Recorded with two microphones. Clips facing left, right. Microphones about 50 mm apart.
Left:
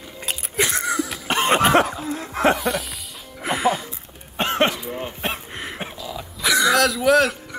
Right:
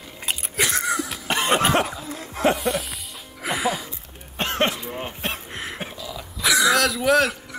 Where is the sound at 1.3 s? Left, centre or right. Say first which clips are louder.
Left 3 dB; left.